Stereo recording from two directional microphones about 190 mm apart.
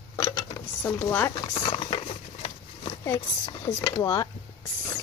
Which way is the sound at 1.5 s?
25° left (ahead or behind).